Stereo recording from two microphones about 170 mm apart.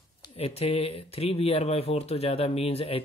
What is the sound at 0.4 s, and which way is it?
Speech, 35° left (ahead or behind).